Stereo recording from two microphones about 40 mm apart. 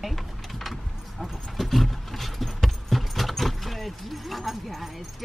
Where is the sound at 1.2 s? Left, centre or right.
Centre.